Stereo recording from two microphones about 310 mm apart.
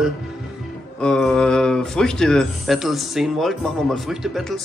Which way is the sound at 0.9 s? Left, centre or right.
Centre.